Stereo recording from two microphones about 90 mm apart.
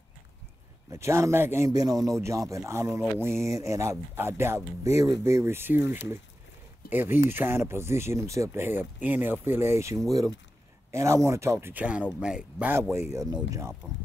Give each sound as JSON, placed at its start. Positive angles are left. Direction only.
{"t": 0.9, "sound": "speech", "side_deg": -30}
{"t": 1.7, "sound": "speech", "side_deg": -45}
{"t": 11.7, "sound": "speech", "side_deg": -15}
{"t": 12.9, "sound": "speech", "side_deg": -30}
{"t": 13.8, "sound": "speech", "side_deg": 5}